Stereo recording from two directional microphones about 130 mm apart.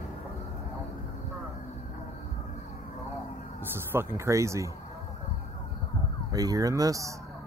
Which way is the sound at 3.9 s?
20° right (ahead or behind).